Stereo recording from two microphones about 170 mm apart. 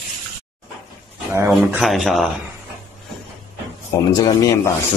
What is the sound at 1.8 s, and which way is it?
Speech, centre (ahead or behind).